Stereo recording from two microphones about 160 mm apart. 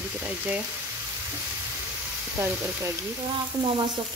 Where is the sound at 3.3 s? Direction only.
30° right (ahead or behind).